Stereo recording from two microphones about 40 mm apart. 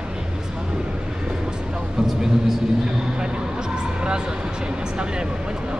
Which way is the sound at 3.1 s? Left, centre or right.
Right.